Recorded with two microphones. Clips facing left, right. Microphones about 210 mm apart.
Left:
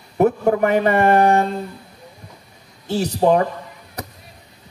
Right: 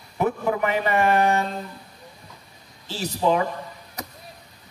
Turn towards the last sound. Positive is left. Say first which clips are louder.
# left 6 dB
turn(degrees=45)  # may be behind; listen again after turning